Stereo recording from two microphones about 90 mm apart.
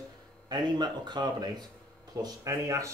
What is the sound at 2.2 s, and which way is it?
Speech, 35° right (ahead or behind).